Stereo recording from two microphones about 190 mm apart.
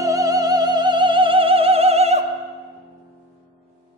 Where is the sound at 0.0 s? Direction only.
20° right (ahead or behind).